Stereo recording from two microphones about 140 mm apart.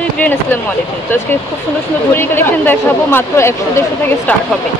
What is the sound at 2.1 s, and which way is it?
Speech, 15° left (ahead or behind).